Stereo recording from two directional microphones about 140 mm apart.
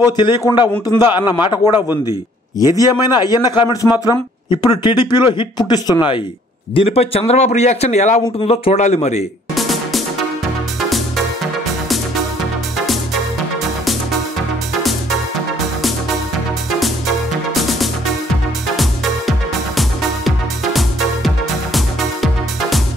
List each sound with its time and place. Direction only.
0.0 s a man's voice: 35° left (ahead or behind)
2.8 s a man's voice: 30° left (ahead or behind); by 8.2 s 55° left (ahead or behind)
8.4 s a man's voice: 45° left (ahead or behind)
9.6 s music: centre (ahead or behind)
14.7 s music: centre (ahead or behind)
17.6 s music: centre (ahead or behind)
19.8 s music: centre (ahead or behind)